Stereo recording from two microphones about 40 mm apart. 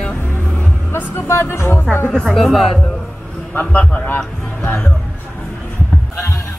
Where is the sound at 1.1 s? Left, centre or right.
Left.